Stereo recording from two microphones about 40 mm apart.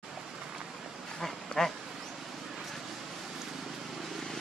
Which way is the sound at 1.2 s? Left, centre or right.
Centre.